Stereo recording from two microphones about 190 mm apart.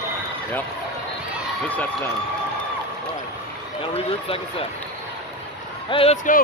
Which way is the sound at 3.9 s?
30° left (ahead or behind).